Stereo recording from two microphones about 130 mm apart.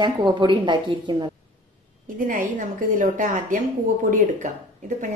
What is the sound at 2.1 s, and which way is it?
A woman's voice, 90° right.